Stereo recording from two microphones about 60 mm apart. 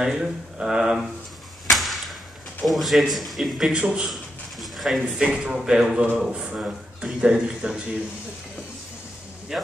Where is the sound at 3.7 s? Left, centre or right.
Centre.